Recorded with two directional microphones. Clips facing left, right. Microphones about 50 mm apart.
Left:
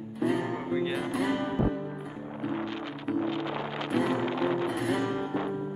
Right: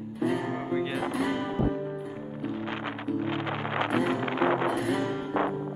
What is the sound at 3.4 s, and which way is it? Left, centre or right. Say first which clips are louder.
Music: right 3 dB; right.